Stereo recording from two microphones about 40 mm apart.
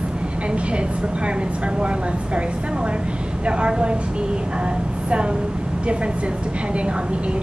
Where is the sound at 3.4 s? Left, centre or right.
Right.